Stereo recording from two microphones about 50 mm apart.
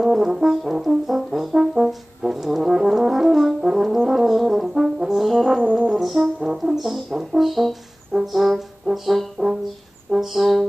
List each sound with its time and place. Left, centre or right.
0.0 s brass instrument: centre
5.6 s brass instrument: right
5.9 s brass instrument: centre